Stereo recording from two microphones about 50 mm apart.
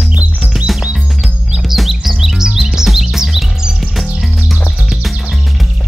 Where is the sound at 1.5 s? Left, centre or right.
Centre.